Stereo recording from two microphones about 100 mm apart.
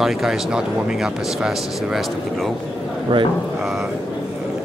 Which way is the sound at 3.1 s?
55° right (ahead or behind).